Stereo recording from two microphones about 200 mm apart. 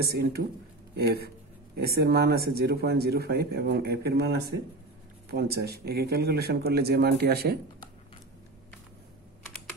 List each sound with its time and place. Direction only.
0.1 s speech: 50° right (ahead or behind)